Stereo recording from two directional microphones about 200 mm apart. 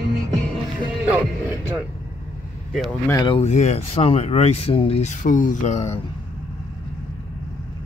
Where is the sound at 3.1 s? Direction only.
25° left (ahead or behind).